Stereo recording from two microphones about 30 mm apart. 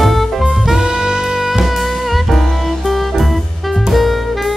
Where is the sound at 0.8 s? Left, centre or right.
Right.